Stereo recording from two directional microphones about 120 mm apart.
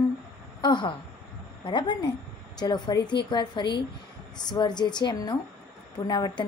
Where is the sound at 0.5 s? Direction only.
40° left (ahead or behind).